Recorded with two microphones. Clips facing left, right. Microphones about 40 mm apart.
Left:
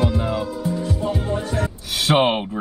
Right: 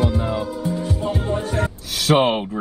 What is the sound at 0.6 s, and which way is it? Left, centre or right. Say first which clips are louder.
Music: even; centre.